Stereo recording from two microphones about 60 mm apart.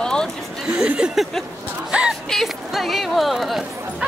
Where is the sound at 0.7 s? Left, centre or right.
Centre.